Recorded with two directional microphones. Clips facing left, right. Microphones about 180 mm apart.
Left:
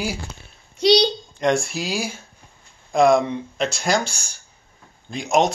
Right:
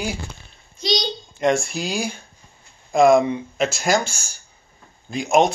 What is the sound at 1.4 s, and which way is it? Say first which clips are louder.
Speech: right 1 dB; centre (ahead or behind).